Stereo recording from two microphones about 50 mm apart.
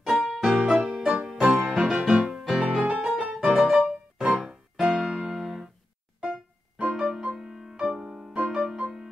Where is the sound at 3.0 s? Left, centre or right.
Centre.